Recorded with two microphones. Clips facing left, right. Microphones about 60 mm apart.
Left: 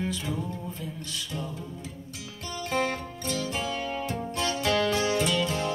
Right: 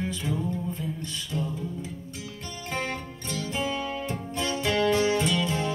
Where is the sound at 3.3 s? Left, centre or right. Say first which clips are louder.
Right 1 dB; right.